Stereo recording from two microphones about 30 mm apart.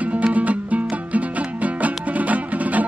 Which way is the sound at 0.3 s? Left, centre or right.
Right.